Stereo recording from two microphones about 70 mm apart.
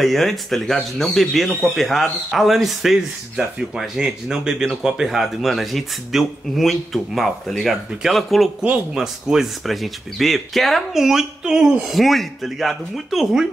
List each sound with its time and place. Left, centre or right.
0.0 s speech: centre